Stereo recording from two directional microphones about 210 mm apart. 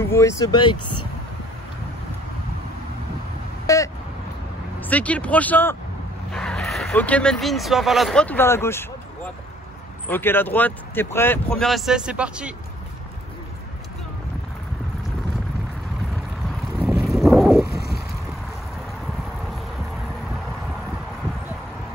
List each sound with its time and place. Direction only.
0.0 s speech: 15° left (ahead or behind)
3.6 s vehicle: 15° left (ahead or behind)
4.8 s speech: 5° left (ahead or behind)
16.7 s boat: 5° right (ahead or behind)